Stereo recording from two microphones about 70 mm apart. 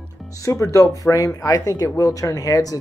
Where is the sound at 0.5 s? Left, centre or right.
Left.